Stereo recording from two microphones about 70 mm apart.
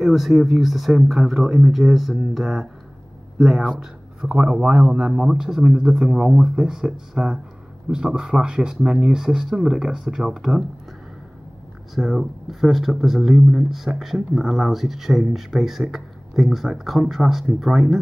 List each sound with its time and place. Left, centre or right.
0.0 s speech: centre
4.3 s speech: right
5.1 s speech: centre
11.9 s speech: centre